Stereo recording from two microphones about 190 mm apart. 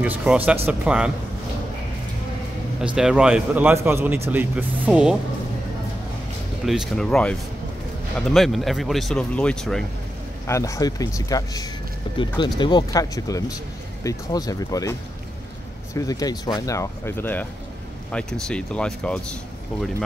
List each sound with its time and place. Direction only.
0.0 s speech: 5° right (ahead or behind)
2.8 s speech: 5° right (ahead or behind)
6.6 s speech: centre (ahead or behind)
10.4 s speech: 15° left (ahead or behind)